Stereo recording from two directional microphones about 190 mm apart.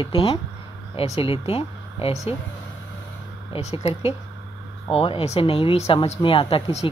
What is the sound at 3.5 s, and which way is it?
Speech, 35° left (ahead or behind).